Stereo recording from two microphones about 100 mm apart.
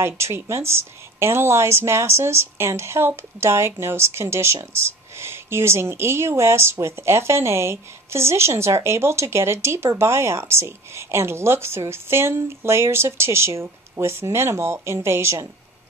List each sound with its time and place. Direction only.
0.0 s speech: 25° right (ahead or behind)